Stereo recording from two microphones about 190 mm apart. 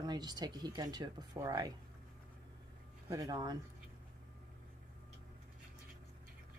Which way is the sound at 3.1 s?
20° right (ahead or behind).